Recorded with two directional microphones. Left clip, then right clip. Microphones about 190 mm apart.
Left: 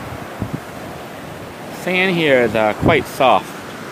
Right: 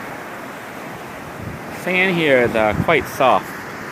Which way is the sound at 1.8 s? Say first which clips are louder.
Left 1 dB; 10° left (ahead or behind).